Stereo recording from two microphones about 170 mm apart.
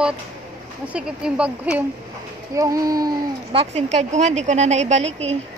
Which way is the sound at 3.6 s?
40° right (ahead or behind).